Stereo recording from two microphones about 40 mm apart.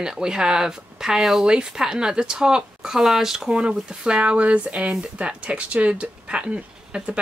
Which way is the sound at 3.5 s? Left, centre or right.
Right.